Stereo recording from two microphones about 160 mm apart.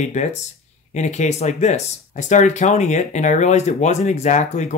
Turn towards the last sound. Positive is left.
turn(degrees=50)  # may be behind; listen again after turning